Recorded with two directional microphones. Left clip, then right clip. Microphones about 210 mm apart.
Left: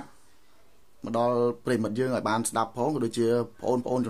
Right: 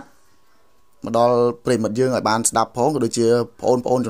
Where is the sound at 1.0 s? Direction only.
30° right (ahead or behind).